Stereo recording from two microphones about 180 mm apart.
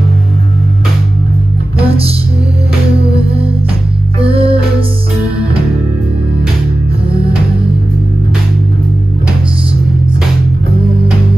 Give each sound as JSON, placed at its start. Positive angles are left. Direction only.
{"t": 1.8, "sound": "music", "side_deg": -35}
{"t": 4.2, "sound": "music", "side_deg": -30}